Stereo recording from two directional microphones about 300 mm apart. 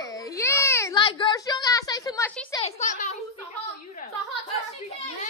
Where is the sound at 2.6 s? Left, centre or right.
Left.